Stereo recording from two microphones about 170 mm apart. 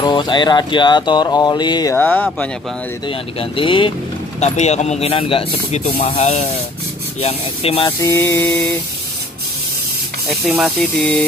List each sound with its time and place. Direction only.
0.0 s speech: 25° left (ahead or behind)
2.0 s mantra: 10° left (ahead or behind)
3.1 s speech: 30° left (ahead or behind)
4.4 s speech: 40° left (ahead or behind)
8.0 s mantra: 15° left (ahead or behind)
10.2 s speech: 10° right (ahead or behind)
10.8 s mantra: 10° left (ahead or behind)